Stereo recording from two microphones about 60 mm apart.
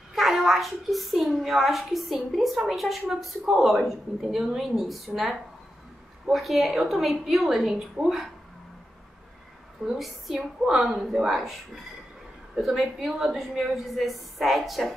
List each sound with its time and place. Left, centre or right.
0.1 s a woman's voice: centre
9.8 s a woman's voice: centre